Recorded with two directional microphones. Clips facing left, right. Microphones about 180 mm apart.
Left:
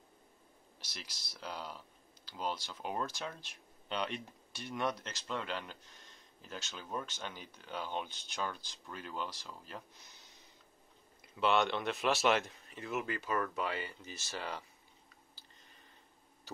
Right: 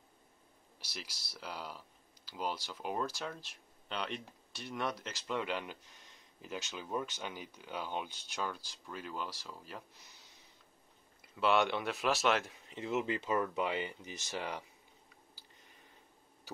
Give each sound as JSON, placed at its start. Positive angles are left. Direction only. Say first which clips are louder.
{"t": 0.7, "sound": "speech", "louder": "right 3 dB", "side_deg": -10}
{"t": 11.3, "sound": "speech", "louder": "right 1 dB", "side_deg": -5}
{"t": 12.6, "sound": "speech", "louder": "right 3 dB", "side_deg": -20}